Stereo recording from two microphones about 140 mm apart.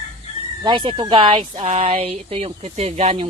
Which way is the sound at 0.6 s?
35° right (ahead or behind).